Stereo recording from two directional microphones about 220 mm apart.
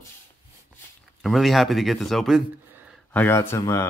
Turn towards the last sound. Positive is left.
turn(degrees=10)  # may be behind; listen again after turning